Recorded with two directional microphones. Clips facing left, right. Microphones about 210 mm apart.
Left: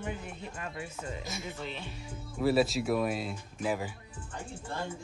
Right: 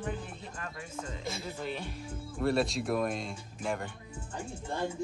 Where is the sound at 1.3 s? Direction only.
30° right (ahead or behind).